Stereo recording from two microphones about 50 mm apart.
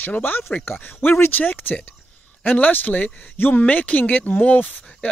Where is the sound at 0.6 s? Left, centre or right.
Left.